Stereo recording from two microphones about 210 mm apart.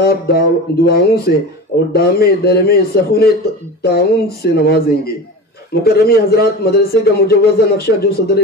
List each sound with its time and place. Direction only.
0.0 s a man's voice: 50° left (ahead or behind)